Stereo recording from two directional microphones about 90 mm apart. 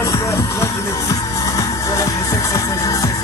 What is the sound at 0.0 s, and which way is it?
Music, 35° left (ahead or behind).